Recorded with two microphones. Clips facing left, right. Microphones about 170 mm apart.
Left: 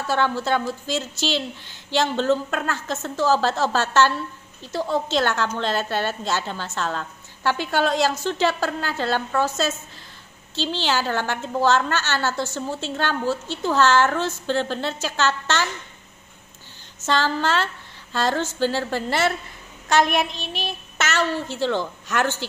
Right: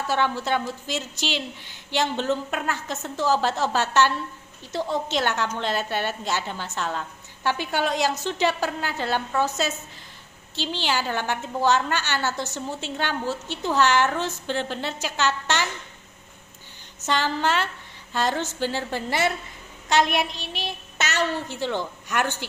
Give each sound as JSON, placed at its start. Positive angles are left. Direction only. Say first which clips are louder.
{"t": 0.1, "sound": "a woman's voice", "louder": "left 3 dB", "side_deg": -15}
{"t": 17.0, "sound": "a woman's voice", "louder": "left 2 dB", "side_deg": -15}
{"t": 19.9, "sound": "a woman's voice", "louder": "left 2 dB", "side_deg": 45}
{"t": 20.3, "sound": "a woman's voice", "louder": "left 2 dB", "side_deg": -15}